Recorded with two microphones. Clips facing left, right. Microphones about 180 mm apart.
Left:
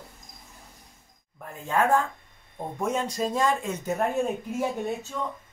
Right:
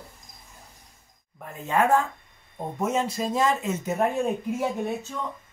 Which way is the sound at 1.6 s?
10° right (ahead or behind).